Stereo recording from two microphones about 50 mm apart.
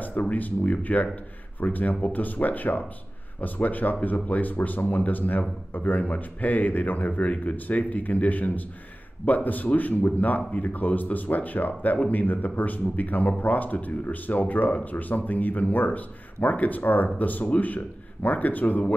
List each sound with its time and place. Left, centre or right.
0.0 s speech: left